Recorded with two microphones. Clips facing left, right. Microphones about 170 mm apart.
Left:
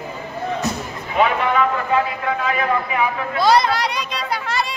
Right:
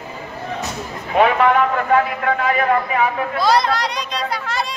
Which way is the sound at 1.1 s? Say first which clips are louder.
Right 4 dB; 55° right (ahead or behind).